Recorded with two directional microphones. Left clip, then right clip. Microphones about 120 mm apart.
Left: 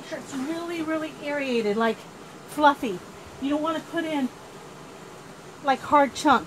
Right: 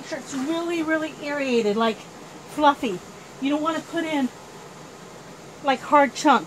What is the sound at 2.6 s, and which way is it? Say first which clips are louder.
Speech: right 1 dB; 40° left (ahead or behind).